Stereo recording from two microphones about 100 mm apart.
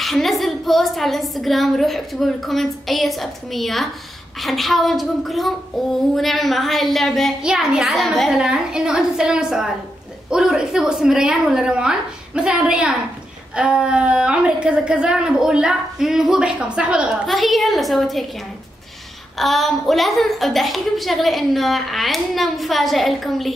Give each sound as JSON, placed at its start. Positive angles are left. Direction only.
{"t": 0.0, "sound": "a woman's voice", "side_deg": 0}
{"t": 17.3, "sound": "a woman's voice", "side_deg": 0}
{"t": 19.3, "sound": "a woman's voice", "side_deg": 0}